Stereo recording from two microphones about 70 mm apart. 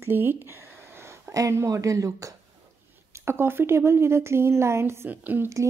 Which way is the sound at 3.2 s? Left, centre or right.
Right.